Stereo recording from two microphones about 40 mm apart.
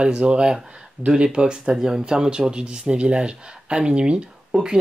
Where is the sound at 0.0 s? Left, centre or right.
Right.